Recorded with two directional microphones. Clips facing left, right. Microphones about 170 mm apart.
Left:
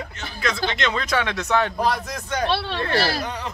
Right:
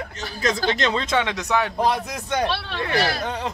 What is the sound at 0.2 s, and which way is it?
Speech, 40° right (ahead or behind).